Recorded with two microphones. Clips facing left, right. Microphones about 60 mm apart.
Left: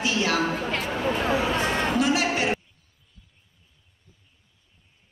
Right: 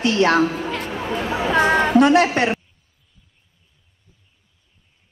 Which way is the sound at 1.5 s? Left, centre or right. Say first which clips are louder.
Right 9 dB; right.